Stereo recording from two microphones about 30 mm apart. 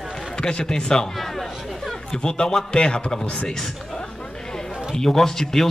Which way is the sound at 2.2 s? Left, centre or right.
Left.